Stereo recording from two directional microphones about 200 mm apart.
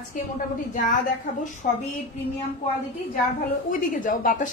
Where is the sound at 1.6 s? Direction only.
35° left (ahead or behind).